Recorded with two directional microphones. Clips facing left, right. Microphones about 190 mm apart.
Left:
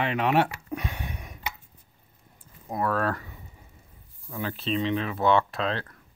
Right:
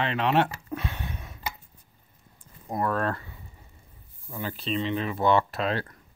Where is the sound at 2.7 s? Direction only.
Centre (ahead or behind).